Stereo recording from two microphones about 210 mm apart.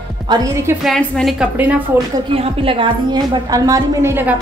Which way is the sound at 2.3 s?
25° right (ahead or behind).